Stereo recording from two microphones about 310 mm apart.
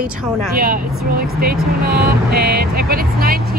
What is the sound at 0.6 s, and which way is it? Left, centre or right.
Speech, right.